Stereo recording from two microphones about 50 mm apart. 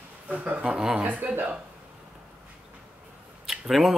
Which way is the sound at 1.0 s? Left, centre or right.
Right.